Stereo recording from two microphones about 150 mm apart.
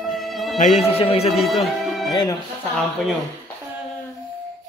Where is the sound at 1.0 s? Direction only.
40° left (ahead or behind).